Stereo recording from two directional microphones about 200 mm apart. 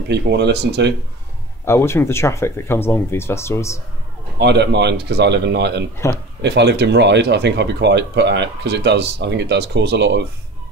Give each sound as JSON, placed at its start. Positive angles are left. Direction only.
{"t": 0.1, "sound": "speech", "side_deg": -60}
{"t": 1.7, "sound": "speech", "side_deg": 10}
{"t": 4.4, "sound": "speech", "side_deg": -60}